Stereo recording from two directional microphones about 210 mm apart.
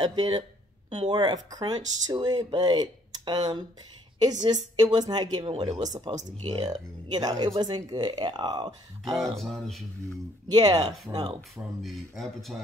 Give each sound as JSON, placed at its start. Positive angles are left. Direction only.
{"t": 0.0, "sound": "speech", "side_deg": -20}
{"t": 9.1, "sound": "speech", "side_deg": 0}
{"t": 10.5, "sound": "speech", "side_deg": -20}
{"t": 11.5, "sound": "speech", "side_deg": 0}